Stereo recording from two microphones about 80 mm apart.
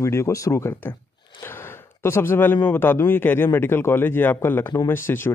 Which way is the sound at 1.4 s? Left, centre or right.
Left.